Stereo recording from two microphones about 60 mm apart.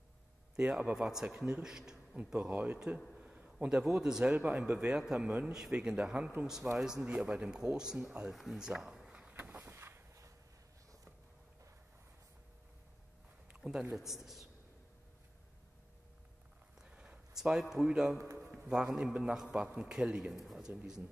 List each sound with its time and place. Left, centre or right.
0.6 s speech: centre
2.5 s speech: right
3.2 s a man's voice: centre
4.4 s speech: right
4.7 s a woman's voice: centre
9.3 s vehicle: right
9.8 s a sound: right
13.6 s a sound: centre
13.9 s a woman's voice: centre
16.9 s a sound: centre
17.7 s speech: centre